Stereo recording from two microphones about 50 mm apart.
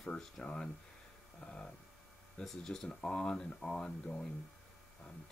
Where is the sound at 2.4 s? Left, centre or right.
Centre.